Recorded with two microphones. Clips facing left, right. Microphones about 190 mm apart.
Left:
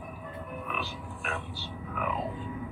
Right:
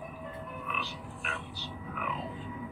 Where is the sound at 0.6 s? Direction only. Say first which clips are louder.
Left 3 dB; 50° left (ahead or behind).